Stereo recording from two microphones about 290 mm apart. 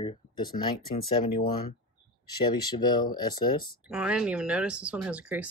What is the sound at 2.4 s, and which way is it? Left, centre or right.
Speech, centre.